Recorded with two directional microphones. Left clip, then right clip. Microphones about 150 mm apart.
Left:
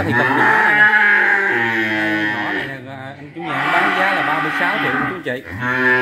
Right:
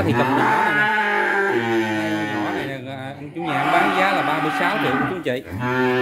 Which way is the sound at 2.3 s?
10° right (ahead or behind).